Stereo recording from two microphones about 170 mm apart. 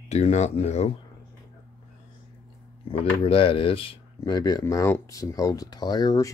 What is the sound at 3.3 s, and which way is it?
Speech, 30° left (ahead or behind).